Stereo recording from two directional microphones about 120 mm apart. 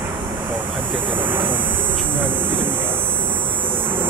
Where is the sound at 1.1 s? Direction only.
15° right (ahead or behind).